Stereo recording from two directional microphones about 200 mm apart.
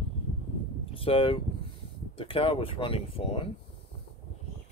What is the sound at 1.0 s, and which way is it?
Speech, 25° left (ahead or behind).